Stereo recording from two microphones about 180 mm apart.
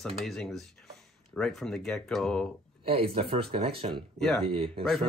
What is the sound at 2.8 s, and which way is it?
Speech, 30° right (ahead or behind).